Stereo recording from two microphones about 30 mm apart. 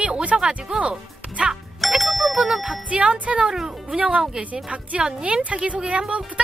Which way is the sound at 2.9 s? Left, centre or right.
Right.